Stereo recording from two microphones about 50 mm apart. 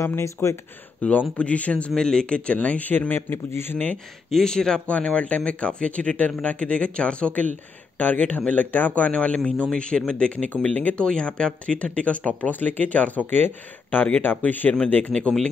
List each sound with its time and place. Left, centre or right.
0.0 s speech: left
1.0 s speech: left
1.9 s speech: centre
3.2 s a man's voice: left
3.7 s speech: left
4.3 s speech: centre
4.8 s speech: left
9.1 s speech: left
11.1 s speech: centre